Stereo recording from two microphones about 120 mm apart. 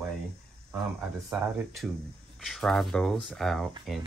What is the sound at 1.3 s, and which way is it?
Speech, centre (ahead or behind).